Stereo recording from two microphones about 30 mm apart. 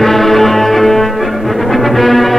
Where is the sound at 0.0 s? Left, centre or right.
Centre.